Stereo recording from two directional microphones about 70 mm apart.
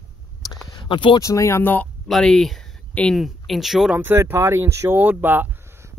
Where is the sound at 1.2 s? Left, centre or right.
Left.